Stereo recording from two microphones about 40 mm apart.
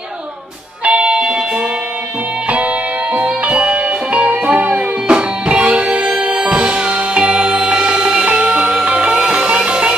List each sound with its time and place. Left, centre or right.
0.8 s music: right
2.5 s music: right